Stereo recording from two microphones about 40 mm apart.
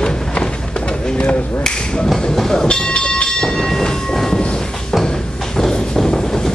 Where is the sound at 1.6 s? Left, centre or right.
Centre.